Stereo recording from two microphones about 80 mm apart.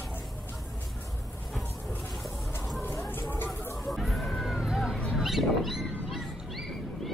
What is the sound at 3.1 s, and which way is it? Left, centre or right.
Music, left.